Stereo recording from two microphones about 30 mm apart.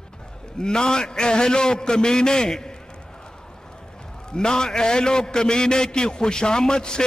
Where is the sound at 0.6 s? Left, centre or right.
Left.